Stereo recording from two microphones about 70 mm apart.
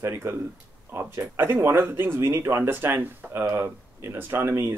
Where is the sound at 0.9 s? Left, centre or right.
Right.